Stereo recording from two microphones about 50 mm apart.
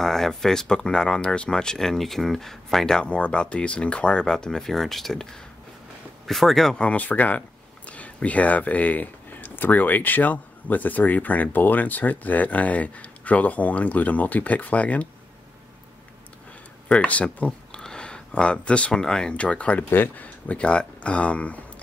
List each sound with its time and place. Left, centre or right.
0.0 s speech: centre
3.0 s speech: left; by 6.8 s centre
6.8 s speech: left
16.9 s speech: left
17.7 s speech: centre
19.8 s speech: left
20.4 s speech: left